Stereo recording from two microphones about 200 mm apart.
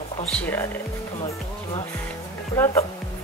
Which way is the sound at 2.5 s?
15° left (ahead or behind).